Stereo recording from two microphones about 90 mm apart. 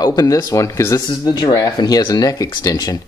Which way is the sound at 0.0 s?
45° left (ahead or behind).